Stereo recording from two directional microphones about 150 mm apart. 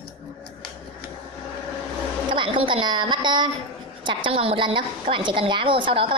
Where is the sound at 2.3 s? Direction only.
35° right (ahead or behind).